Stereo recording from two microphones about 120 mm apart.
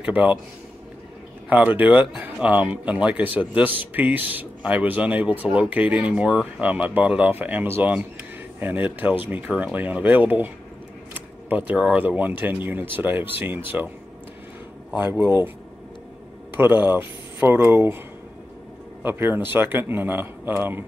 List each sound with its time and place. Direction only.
0.0 s speech: 10° right (ahead or behind)
1.5 s speech: 10° right (ahead or behind)
15.0 s speech: 15° right (ahead or behind)
16.5 s speech: 15° right (ahead or behind)
19.0 s speech: 20° right (ahead or behind)